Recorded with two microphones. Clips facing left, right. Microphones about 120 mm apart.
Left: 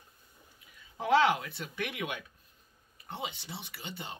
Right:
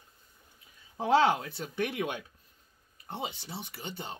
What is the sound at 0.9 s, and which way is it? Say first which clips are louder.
Speech: right 1 dB; 35° right (ahead or behind).